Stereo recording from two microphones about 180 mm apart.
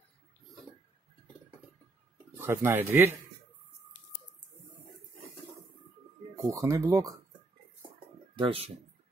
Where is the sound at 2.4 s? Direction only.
15° right (ahead or behind).